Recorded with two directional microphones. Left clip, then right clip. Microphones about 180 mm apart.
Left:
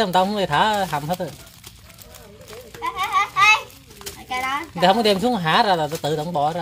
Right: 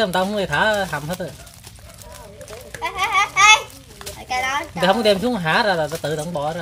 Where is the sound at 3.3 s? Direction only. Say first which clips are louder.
Right 3 dB; 45° right (ahead or behind).